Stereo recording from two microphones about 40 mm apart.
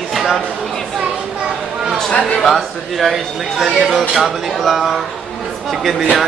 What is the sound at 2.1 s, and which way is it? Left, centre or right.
Speech, left.